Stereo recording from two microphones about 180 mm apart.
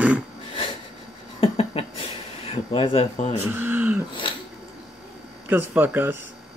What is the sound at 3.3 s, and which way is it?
Speech, 10° right (ahead or behind).